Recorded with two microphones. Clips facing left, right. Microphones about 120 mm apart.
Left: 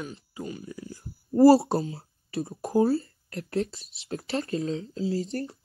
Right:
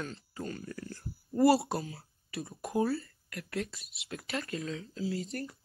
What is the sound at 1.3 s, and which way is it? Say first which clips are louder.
Speech: left 8 dB; 30° left (ahead or behind).